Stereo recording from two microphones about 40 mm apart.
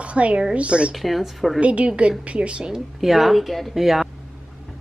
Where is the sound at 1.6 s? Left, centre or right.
Right.